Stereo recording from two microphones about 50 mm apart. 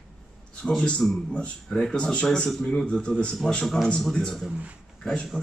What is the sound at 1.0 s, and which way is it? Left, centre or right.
Speech, centre.